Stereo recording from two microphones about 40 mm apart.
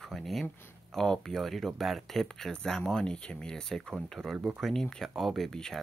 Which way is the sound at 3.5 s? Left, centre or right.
Centre.